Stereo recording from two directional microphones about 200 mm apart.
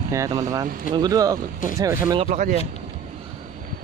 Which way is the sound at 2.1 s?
35° right (ahead or behind).